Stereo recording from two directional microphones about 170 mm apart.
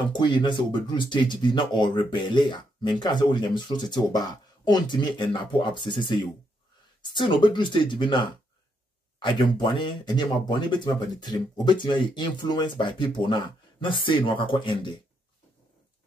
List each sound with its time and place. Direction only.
0.1 s speech: 25° left (ahead or behind)